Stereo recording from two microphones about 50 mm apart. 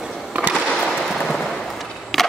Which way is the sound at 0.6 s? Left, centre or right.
Centre.